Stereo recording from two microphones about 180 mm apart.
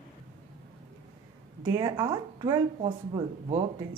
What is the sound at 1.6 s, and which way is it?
Speech, 20° right (ahead or behind).